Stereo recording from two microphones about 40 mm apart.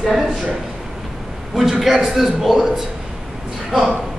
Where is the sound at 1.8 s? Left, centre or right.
Centre.